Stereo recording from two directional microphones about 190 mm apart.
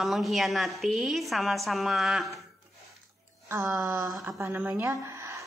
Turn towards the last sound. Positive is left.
turn(degrees=-15)  # may be behind; listen again after turning